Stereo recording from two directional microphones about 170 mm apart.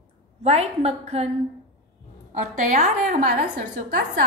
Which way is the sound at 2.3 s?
50° right (ahead or behind).